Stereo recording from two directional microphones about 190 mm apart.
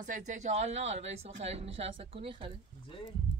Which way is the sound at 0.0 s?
40° right (ahead or behind).